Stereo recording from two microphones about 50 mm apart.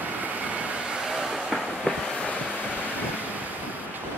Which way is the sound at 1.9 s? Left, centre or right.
Left.